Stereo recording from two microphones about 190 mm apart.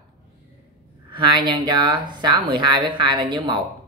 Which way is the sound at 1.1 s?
25° right (ahead or behind).